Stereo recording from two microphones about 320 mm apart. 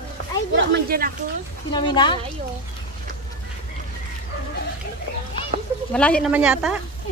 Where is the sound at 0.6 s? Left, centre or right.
Right.